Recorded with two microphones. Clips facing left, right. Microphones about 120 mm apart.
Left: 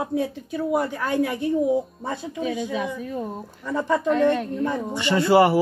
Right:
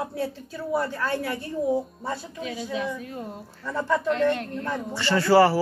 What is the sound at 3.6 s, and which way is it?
Speech, 15° left (ahead or behind).